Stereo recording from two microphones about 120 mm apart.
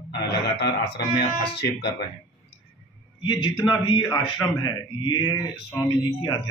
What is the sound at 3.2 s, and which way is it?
A man's voice, 40° left (ahead or behind).